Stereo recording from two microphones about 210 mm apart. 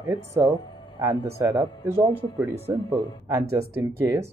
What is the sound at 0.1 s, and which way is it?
Speech, 15° right (ahead or behind).